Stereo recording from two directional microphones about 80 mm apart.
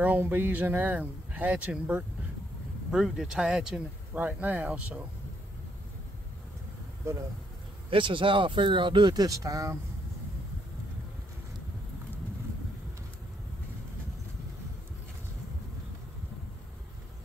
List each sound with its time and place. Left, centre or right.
0.0 s speech: right
2.9 s speech: centre
4.1 s speech: right
7.9 s speech: right